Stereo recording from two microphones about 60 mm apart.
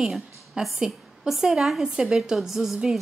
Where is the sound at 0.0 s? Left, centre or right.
Centre.